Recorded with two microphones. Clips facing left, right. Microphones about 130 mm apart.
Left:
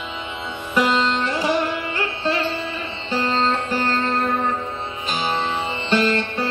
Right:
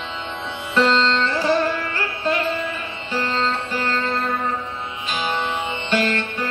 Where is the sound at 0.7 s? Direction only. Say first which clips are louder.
Right 1 dB; 10° left (ahead or behind).